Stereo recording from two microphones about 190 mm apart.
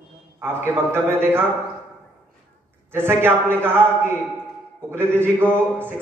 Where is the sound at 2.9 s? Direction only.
10° right (ahead or behind).